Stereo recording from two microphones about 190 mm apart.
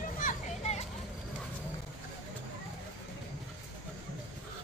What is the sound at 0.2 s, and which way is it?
Children playing, 40° left (ahead or behind).